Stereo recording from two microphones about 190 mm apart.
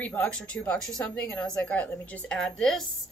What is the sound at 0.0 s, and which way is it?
A woman's voice, 5° left (ahead or behind).